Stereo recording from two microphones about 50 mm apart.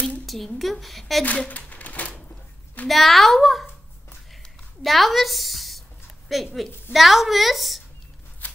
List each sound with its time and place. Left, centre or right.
0.3 s a woman's voice: centre
1.2 s a sound: left
2.9 s a woman's voice: centre
4.8 s a woman's voice: centre